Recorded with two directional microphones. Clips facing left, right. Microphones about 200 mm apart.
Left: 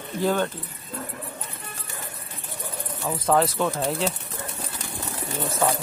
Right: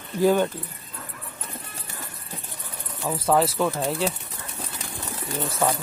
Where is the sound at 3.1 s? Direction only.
5° right (ahead or behind).